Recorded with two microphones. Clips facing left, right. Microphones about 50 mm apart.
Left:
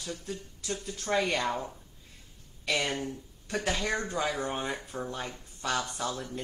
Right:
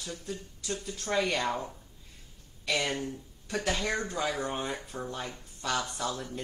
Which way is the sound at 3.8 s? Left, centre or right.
Centre.